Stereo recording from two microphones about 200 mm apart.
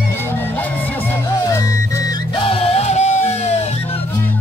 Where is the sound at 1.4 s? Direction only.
15° left (ahead or behind).